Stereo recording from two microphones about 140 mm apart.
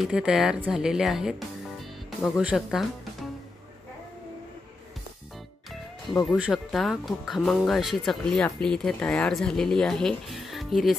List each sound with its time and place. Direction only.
0.0 s speech: 5° right (ahead or behind)
2.0 s music: centre (ahead or behind)
2.4 s speech: centre (ahead or behind)
6.2 s speech: 5° right (ahead or behind)